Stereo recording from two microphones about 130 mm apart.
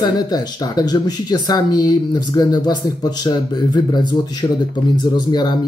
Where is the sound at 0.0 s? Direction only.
30° left (ahead or behind).